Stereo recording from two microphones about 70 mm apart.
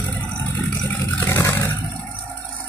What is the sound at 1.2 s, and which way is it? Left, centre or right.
Roar, left.